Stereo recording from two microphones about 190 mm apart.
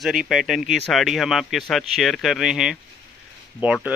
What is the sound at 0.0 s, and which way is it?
Speech, centre (ahead or behind).